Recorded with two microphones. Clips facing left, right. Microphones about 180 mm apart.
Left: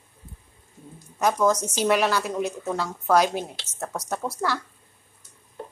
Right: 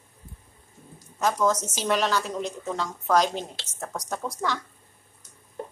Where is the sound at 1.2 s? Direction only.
10° left (ahead or behind).